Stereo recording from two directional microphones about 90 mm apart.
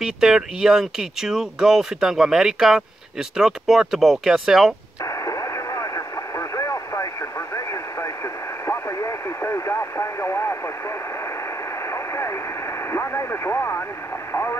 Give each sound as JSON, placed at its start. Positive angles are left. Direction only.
{"t": 0.0, "sound": "speech", "side_deg": -5}
{"t": 5.0, "sound": "radio", "side_deg": 35}
{"t": 11.8, "sound": "radio", "side_deg": 30}